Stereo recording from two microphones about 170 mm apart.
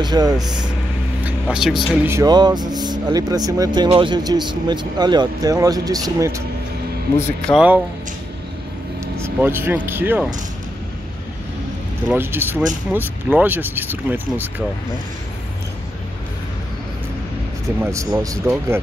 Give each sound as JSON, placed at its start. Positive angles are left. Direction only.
{"t": 0.0, "sound": "speech", "side_deg": -25}
{"t": 1.2, "sound": "vehicle", "side_deg": -5}
{"t": 2.0, "sound": "speech", "side_deg": -20}
{"t": 7.2, "sound": "speech", "side_deg": 15}
{"t": 7.5, "sound": "speech", "side_deg": -10}
{"t": 9.0, "sound": "vehicle", "side_deg": -15}
{"t": 9.8, "sound": "speech", "side_deg": -10}
{"t": 12.1, "sound": "speech", "side_deg": -15}
{"t": 17.6, "sound": "speech", "side_deg": -15}